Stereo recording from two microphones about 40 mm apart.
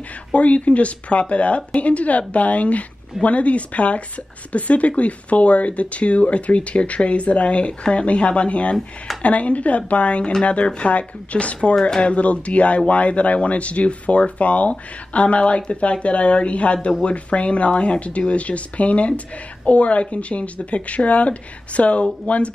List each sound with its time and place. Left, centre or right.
0.3 s speech: left
8.7 s speech: centre
9.2 s speech: left